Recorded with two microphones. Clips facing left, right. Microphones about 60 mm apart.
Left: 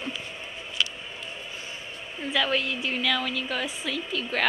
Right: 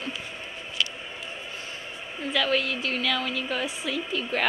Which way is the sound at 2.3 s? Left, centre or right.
Centre.